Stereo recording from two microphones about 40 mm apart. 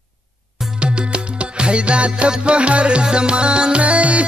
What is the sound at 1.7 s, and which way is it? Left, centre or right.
Music, right.